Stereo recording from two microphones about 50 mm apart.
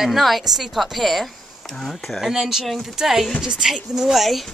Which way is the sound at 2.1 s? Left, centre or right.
Centre.